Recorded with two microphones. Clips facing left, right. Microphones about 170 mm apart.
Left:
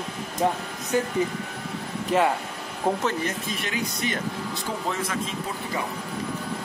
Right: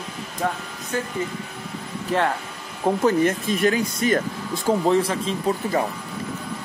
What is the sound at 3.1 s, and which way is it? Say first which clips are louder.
Speech: right 8 dB; 50° right (ahead or behind).